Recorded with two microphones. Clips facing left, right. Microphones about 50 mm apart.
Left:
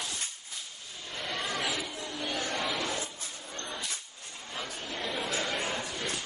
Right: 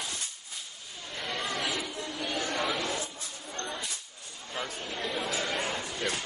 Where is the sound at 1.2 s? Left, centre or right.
Centre.